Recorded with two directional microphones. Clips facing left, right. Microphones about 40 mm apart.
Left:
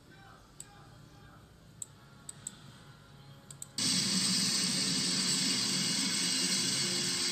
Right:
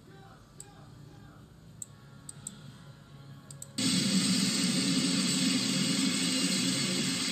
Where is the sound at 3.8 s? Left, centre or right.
Right.